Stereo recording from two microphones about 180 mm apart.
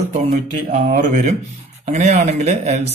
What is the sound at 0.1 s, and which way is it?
Speech, 40° right (ahead or behind).